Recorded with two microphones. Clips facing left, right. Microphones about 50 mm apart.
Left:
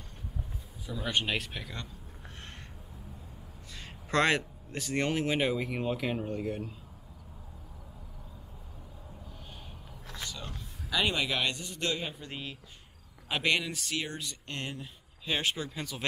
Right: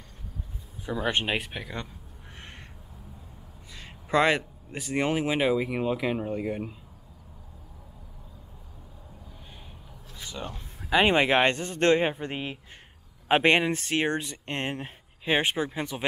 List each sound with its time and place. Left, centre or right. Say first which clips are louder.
0.8 s speech: right 5 dB; right
3.7 s speech: right 5 dB; centre
10.4 s speech: right 5 dB; right
14.2 s speech: right 6 dB; right